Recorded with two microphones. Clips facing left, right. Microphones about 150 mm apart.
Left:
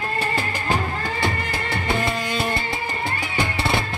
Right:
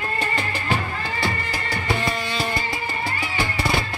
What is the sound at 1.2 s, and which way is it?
Music, 25° left (ahead or behind).